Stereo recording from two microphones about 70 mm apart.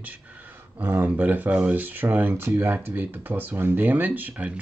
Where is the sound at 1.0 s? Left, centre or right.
Right.